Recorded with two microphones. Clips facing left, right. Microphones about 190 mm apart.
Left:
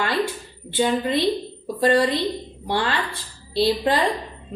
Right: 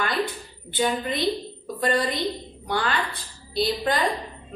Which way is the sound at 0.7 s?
25° left (ahead or behind).